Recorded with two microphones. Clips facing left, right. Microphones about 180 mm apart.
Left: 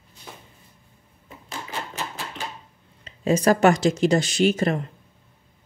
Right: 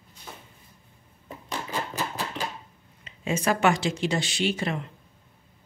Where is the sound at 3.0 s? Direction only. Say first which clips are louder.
Left 7 dB; 40° left (ahead or behind).